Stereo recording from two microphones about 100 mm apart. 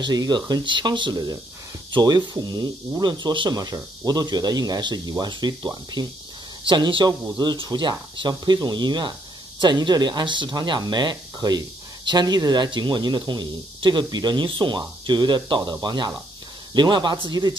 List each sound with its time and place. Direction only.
0.0 s speech: 45° right (ahead or behind)